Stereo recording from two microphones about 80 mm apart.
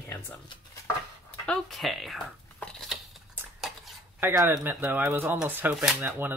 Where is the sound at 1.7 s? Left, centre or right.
Centre.